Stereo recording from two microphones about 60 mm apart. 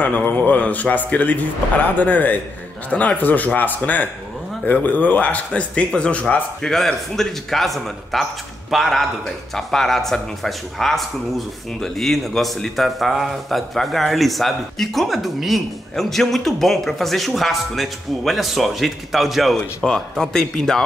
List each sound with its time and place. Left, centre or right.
0.0 s speech: left
6.6 s speech: centre
19.8 s speech: centre